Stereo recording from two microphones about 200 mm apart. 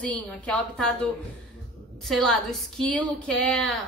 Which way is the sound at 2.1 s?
Centre (ahead or behind).